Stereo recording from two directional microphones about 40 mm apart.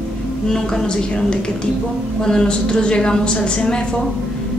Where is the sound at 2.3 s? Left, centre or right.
Left.